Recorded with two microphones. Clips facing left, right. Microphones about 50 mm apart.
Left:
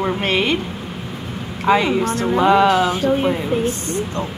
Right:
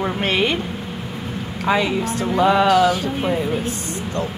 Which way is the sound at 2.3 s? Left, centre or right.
Centre.